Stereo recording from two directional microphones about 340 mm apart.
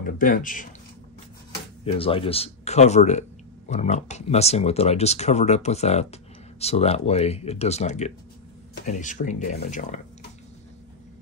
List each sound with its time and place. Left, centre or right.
0.0 s speech: left
1.9 s speech: centre